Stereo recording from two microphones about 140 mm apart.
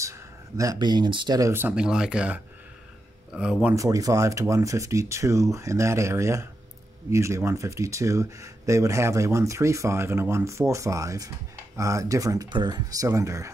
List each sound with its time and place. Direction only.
0.6 s speech: 25° right (ahead or behind)
1.5 s speech: 15° right (ahead or behind)
3.7 s speech: 25° right (ahead or behind)